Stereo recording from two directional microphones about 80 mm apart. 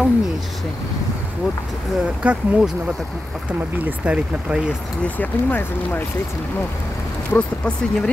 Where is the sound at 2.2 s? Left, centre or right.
Centre.